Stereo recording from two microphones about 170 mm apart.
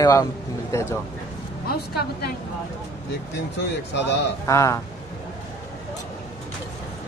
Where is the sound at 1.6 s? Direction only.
65° left (ahead or behind).